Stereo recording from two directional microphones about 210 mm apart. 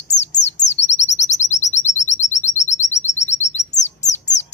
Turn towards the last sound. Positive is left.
turn(degrees=35)  # may be behind; listen again after turning